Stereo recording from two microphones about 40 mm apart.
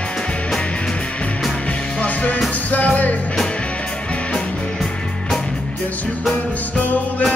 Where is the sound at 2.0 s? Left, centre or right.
Left.